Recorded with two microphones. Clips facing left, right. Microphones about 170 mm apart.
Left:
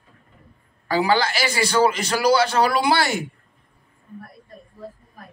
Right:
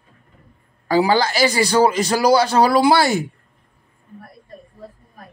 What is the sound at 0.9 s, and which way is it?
A man's voice, 40° right (ahead or behind).